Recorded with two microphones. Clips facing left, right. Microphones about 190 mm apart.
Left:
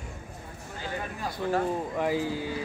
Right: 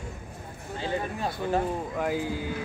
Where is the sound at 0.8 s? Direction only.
25° right (ahead or behind).